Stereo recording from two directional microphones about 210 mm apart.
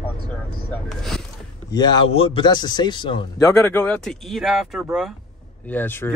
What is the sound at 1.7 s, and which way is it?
Speech, 20° left (ahead or behind).